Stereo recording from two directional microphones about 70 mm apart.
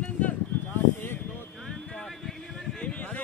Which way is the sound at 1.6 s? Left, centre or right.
Centre.